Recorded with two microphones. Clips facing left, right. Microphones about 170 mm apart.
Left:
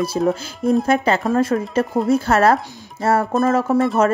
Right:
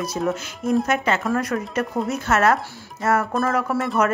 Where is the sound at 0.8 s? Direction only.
35° left (ahead or behind).